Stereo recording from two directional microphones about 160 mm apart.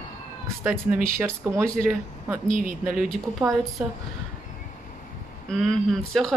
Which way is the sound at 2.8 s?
5° right (ahead or behind).